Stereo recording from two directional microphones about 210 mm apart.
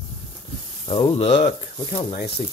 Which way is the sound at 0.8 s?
30° left (ahead or behind).